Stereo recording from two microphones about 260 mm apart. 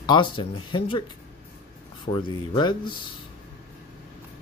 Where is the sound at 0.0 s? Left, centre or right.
Centre.